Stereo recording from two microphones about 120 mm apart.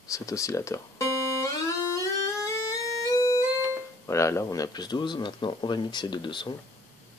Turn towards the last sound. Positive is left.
turn(degrees=40)  # may be behind; listen again after turning